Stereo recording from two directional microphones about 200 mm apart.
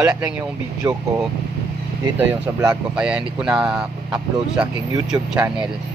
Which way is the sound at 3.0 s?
5° right (ahead or behind).